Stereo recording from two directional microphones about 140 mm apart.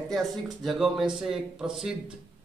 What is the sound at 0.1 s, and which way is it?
Speech, centre (ahead or behind).